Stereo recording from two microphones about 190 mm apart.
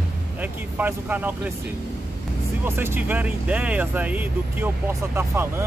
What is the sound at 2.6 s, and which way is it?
Speech, 10° right (ahead or behind).